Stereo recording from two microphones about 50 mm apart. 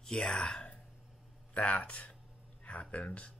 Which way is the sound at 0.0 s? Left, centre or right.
Centre.